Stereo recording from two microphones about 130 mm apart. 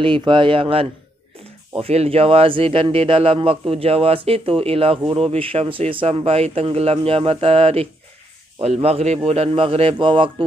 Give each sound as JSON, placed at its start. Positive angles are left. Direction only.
{"t": 0.0, "sound": "speech", "side_deg": -40}